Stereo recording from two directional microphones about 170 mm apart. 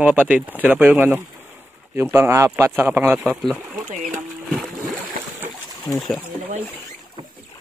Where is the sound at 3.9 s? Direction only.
45° right (ahead or behind).